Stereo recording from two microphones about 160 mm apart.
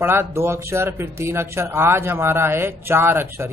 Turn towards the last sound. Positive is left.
turn(degrees=-15)  # may be behind; listen again after turning